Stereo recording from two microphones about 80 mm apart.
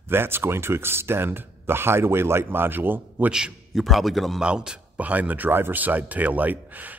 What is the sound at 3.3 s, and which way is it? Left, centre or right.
A man's voice, centre.